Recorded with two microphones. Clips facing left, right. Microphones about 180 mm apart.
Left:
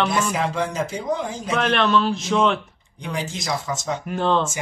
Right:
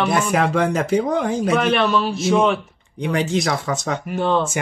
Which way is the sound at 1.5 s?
5° right (ahead or behind).